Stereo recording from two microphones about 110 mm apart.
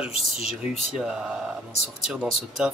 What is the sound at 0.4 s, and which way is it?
Speech, 80° left.